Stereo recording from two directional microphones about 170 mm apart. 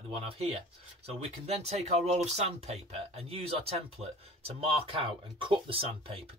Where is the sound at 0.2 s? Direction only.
35° right (ahead or behind).